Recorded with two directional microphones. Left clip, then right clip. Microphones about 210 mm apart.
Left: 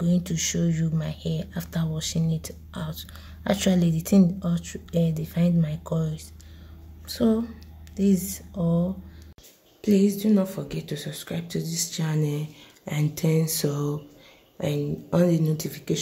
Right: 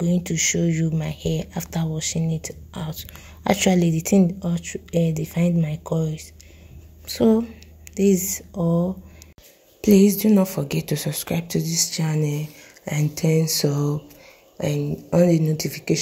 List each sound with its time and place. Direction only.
0.0 s speech: 10° right (ahead or behind)